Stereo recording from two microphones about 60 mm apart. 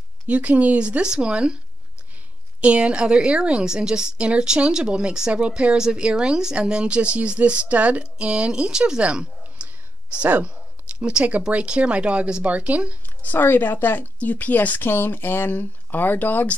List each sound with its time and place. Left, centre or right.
0.3 s speech: right
2.6 s a woman's voice: centre
13.2 s speech: left